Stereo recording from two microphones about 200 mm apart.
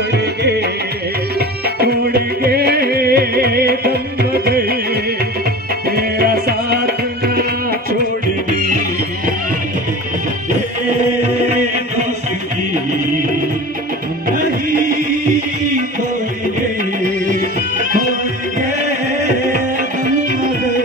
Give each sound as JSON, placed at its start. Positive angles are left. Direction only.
{"t": 0.1, "sound": "music", "side_deg": -55}
{"t": 1.8, "sound": "music", "side_deg": -50}
{"t": 11.4, "sound": "music", "side_deg": 55}
{"t": 17.0, "sound": "music", "side_deg": -40}